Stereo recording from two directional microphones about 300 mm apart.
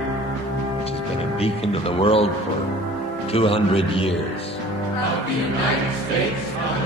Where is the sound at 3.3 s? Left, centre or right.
Centre.